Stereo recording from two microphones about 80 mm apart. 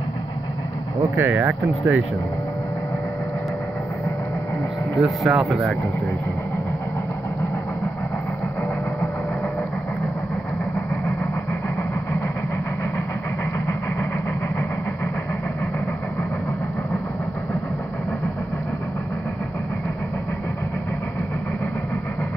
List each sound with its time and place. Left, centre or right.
1.1 s speech: right
4.9 s speech: centre